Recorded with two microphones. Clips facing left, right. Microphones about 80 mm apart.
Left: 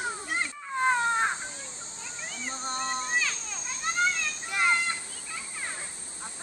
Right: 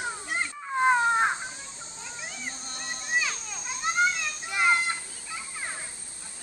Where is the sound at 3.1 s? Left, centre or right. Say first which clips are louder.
Right 1 dB; centre.